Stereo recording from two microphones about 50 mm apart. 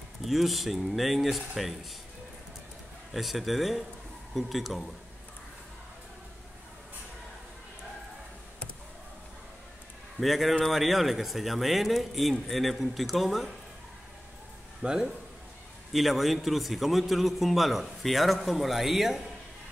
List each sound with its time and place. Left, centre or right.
0.2 s a man's voice: centre
3.1 s a man's voice: centre
10.1 s a man's voice: centre
14.8 s a man's voice: centre
15.9 s a man's voice: centre